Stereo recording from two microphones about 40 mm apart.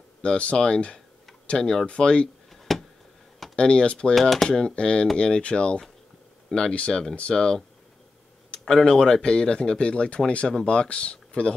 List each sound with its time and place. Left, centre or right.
0.2 s speech: left
2.7 s a sound: centre
3.5 s speech: left
4.1 s speech: centre
4.5 s speech: left
6.5 s speech: centre
8.8 s speech: centre